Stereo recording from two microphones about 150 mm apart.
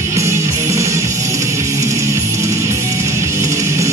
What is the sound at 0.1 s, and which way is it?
Music, 20° right (ahead or behind).